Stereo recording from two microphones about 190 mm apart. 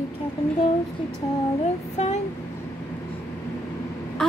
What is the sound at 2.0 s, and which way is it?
Speech, 35° left (ahead or behind).